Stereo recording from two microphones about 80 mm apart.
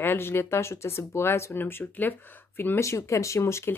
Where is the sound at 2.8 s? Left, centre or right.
Left.